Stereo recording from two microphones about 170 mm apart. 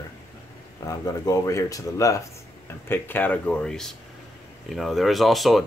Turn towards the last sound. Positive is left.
turn(degrees=0)  # may be behind; listen again after turning